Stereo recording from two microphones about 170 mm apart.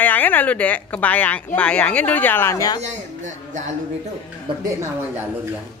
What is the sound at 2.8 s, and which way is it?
Speech, 45° right (ahead or behind).